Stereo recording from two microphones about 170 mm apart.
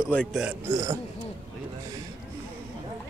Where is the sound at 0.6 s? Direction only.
20° right (ahead or behind).